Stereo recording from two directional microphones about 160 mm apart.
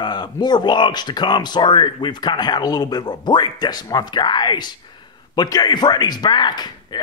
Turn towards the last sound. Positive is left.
turn(degrees=25)  # may be behind; listen again after turning